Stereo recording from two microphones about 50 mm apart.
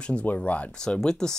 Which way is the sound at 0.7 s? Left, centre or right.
Centre.